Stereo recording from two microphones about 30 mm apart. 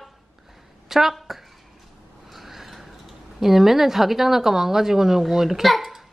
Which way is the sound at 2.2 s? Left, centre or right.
Centre.